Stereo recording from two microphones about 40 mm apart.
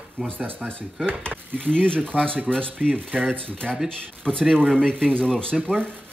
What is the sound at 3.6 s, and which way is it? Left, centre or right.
Speech, centre.